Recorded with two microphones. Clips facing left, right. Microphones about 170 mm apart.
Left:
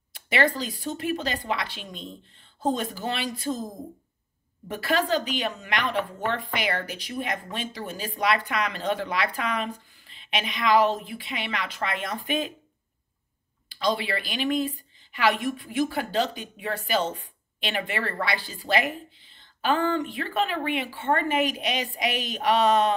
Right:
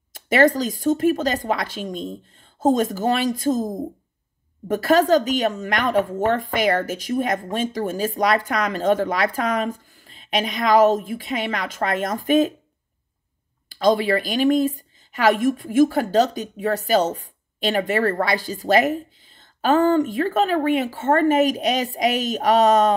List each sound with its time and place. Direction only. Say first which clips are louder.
0.1 s a woman's voice: right 8 dB; 45° right (ahead or behind)
13.7 s a woman's voice: right 9 dB; 45° right (ahead or behind)